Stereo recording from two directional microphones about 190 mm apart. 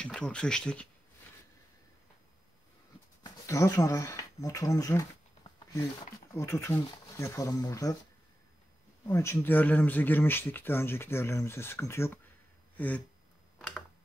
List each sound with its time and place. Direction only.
0.0 s speech: 5° left (ahead or behind)
3.3 s speech: 15° left (ahead or behind)
6.3 s speech: 15° left (ahead or behind)
9.0 s speech: 15° left (ahead or behind)
12.7 s a sound: 10° left (ahead or behind)